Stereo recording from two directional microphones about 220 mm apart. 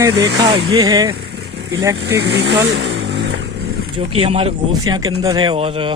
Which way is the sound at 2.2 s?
50° right (ahead or behind).